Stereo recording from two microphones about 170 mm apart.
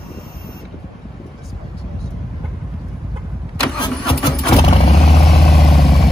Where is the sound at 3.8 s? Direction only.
25° left (ahead or behind).